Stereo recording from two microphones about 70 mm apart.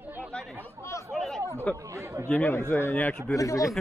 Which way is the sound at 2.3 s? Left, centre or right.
Left.